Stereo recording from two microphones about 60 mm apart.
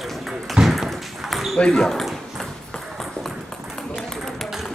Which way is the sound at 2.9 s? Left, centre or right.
Centre.